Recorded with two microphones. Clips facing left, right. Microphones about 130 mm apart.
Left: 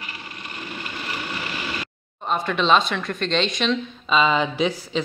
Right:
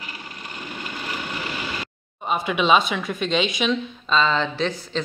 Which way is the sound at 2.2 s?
5° right (ahead or behind).